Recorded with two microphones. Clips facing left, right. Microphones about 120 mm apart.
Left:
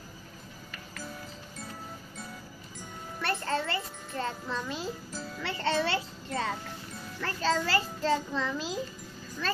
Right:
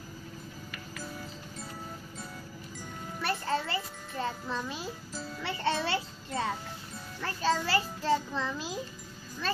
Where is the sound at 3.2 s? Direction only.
10° right (ahead or behind).